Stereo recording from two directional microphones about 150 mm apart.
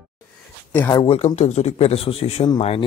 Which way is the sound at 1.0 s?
45° left (ahead or behind).